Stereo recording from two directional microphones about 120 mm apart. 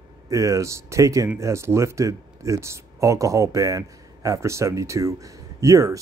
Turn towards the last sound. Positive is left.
turn(degrees=-25)  # may be behind; listen again after turning